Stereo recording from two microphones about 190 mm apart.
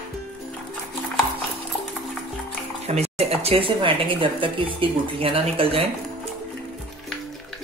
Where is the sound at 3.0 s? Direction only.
30° right (ahead or behind).